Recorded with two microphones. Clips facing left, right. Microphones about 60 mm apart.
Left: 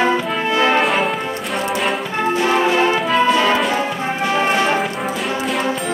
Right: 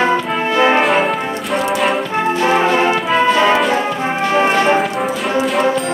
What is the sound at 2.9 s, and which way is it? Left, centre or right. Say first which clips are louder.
Brass instrument: right 1 dB; centre.